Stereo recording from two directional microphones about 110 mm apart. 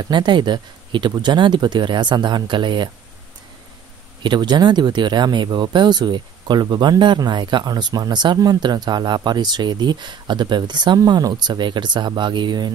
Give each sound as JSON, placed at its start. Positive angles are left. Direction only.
{"t": 0.0, "sound": "speech", "side_deg": -45}
{"t": 4.2, "sound": "speech", "side_deg": -40}